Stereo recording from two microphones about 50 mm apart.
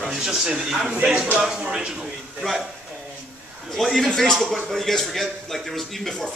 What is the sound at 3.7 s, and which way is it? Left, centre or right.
Speech, centre.